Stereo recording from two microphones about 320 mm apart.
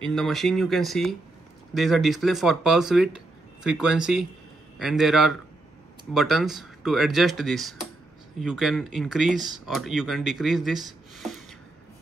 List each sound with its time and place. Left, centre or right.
0.0 s speech: centre